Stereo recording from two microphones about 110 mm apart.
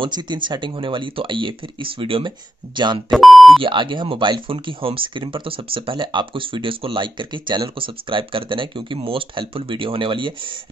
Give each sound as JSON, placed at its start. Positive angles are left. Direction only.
{"t": 0.0, "sound": "speech", "side_deg": -45}
{"t": 3.1, "sound": "speech", "side_deg": 0}
{"t": 3.6, "sound": "speech", "side_deg": -45}